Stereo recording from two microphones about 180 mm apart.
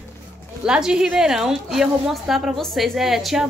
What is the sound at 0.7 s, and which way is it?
A woman's voice, 5° right (ahead or behind).